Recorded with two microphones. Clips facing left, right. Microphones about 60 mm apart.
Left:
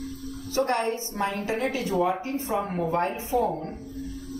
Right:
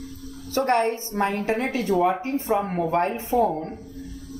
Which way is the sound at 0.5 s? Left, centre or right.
Right.